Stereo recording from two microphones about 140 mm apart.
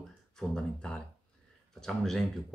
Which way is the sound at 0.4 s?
5° left (ahead or behind).